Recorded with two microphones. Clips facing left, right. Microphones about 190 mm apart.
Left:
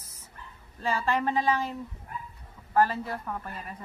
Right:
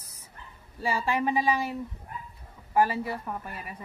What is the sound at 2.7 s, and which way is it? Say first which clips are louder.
Speech: even; 10° right (ahead or behind).